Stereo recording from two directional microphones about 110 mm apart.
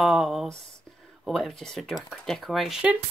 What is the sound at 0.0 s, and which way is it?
Speech, centre (ahead or behind).